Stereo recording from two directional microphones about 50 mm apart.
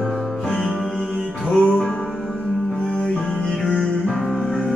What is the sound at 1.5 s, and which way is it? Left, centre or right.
Music, left.